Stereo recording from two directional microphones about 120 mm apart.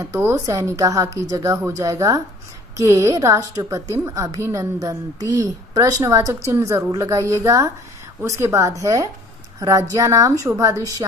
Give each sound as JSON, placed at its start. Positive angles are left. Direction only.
{"t": 0.0, "sound": "a woman's voice", "side_deg": -25}